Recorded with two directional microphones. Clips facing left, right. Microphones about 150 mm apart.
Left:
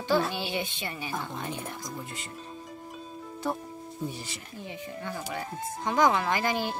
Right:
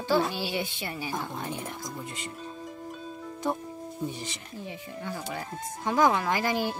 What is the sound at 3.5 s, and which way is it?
Speech, 20° right (ahead or behind).